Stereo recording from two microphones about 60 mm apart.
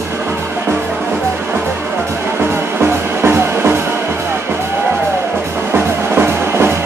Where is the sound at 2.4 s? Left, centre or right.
Right.